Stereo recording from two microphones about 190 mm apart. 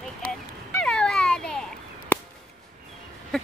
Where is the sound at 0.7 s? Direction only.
5° left (ahead or behind).